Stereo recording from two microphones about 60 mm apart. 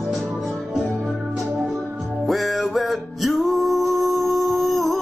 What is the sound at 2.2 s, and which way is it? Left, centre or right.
Music, centre.